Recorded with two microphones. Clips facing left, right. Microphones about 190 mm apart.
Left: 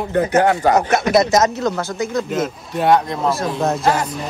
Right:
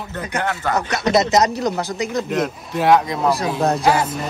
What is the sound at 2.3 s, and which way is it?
Speech, centre (ahead or behind).